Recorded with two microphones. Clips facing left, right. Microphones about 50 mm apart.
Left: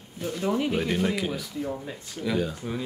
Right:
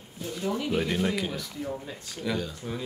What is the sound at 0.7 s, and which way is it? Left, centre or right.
Speech, centre.